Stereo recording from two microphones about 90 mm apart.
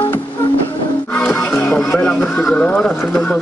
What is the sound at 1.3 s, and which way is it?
Music, 5° left (ahead or behind).